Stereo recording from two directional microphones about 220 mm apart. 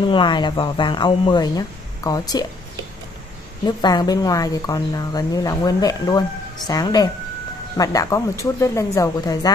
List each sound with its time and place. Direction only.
0.0 s speech: 20° left (ahead or behind)
3.6 s speech: 20° left (ahead or behind)